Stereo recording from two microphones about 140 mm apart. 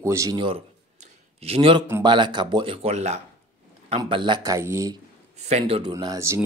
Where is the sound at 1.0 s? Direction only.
45° right (ahead or behind).